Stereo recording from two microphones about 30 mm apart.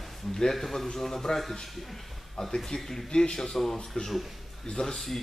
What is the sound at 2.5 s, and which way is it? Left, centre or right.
Speech, centre.